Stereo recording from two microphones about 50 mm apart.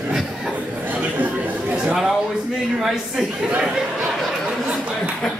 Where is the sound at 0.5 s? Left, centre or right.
Right.